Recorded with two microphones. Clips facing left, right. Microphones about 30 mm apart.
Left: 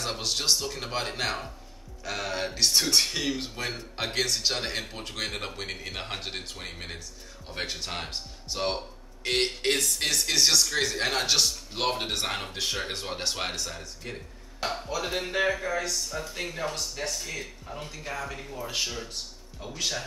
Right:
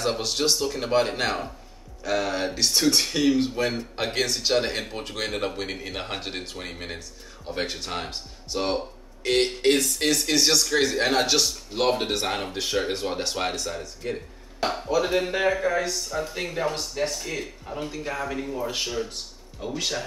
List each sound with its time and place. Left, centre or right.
0.0 s speech: centre
14.6 s speech: right